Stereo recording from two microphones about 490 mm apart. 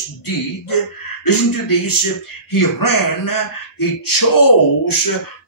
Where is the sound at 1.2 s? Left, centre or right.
Left.